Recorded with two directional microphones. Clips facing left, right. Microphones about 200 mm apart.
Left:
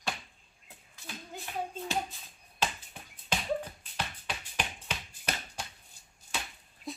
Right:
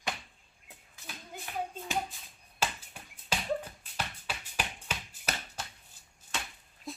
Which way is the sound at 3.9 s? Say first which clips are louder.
Even; 10° right (ahead or behind).